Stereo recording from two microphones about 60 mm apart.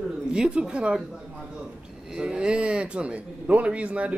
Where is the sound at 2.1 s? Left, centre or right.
Centre.